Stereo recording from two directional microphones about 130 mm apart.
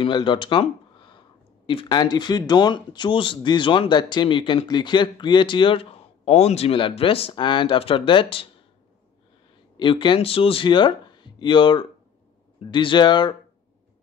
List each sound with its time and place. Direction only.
0.0 s speech: 40° left (ahead or behind)
9.8 s speech: 40° left (ahead or behind)